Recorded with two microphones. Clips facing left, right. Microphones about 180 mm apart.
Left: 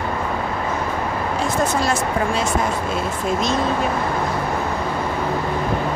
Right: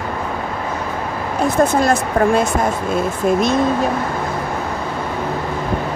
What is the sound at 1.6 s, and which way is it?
Speech, 55° right (ahead or behind).